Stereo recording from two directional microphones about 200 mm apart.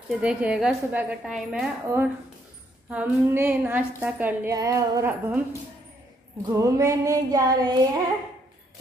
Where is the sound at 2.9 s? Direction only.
10° right (ahead or behind).